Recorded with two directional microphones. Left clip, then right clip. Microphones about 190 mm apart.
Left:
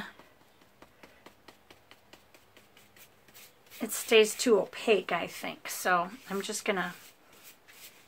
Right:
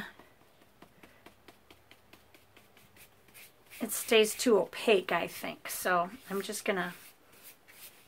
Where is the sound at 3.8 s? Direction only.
5° right (ahead or behind).